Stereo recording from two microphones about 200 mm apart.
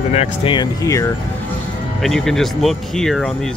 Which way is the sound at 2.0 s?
Centre (ahead or behind).